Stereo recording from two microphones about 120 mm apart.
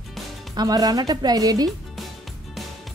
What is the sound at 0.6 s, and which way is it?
Speech, 30° right (ahead or behind).